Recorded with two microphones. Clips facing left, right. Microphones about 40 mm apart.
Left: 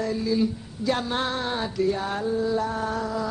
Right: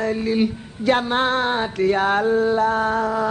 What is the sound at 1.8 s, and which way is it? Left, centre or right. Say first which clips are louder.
A man's voice: right 7 dB; right.